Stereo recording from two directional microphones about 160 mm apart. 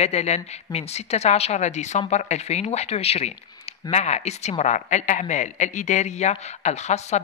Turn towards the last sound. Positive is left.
turn(degrees=45)  # may be behind; listen again after turning